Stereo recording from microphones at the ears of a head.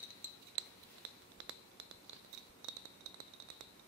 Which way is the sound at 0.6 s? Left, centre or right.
Right.